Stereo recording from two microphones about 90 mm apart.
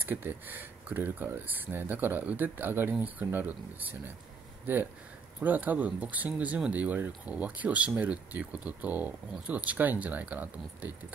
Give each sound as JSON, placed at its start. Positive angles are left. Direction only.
{"t": 0.0, "sound": "speech", "side_deg": -20}
{"t": 5.4, "sound": "speech", "side_deg": -20}